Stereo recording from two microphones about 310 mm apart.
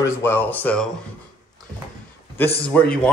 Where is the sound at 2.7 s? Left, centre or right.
Centre.